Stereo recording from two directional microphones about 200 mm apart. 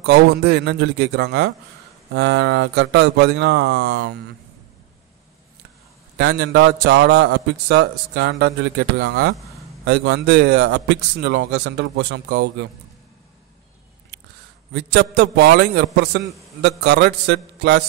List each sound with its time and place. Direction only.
0.0 s a man's voice: 55° right (ahead or behind)
6.1 s a man's voice: 55° right (ahead or behind)
14.7 s a man's voice: 55° right (ahead or behind)